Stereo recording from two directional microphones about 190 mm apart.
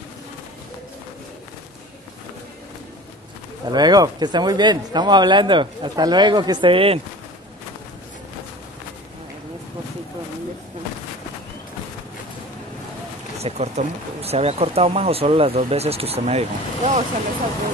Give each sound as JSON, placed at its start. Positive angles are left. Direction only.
{"t": 3.6, "sound": "speech", "side_deg": -20}
{"t": 13.4, "sound": "speech", "side_deg": -35}